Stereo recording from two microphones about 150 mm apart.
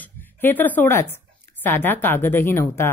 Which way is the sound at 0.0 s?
15° left (ahead or behind).